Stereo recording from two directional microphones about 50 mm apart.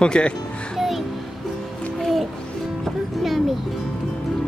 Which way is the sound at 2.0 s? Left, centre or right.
Centre.